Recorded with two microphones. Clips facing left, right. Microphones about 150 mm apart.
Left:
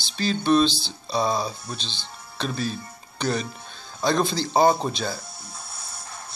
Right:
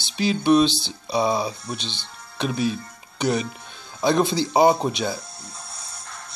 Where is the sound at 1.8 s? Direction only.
60° right (ahead or behind).